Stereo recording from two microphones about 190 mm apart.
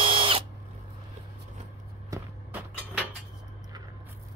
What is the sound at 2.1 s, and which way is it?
Vehicle, 10° right (ahead or behind).